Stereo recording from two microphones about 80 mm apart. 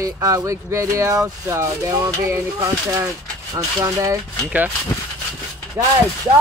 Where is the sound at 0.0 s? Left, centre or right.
Right.